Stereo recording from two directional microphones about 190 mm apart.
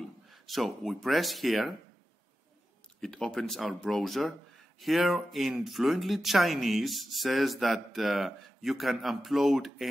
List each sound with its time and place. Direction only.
0.3 s speech: centre (ahead or behind)
3.0 s speech: 5° left (ahead or behind)